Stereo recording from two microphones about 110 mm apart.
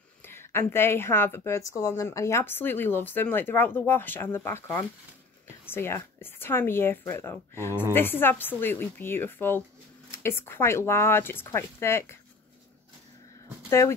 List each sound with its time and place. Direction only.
0.2 s a woman's voice: 20° left (ahead or behind)
13.7 s speech: 25° left (ahead or behind)